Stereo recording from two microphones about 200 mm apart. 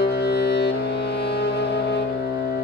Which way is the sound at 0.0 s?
55° left (ahead or behind).